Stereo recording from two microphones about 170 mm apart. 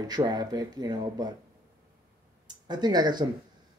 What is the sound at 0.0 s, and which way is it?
Speech, 25° right (ahead or behind).